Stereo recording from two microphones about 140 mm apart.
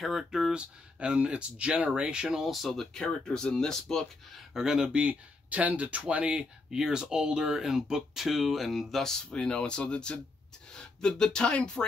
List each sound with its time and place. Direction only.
0.0 s speech: centre (ahead or behind)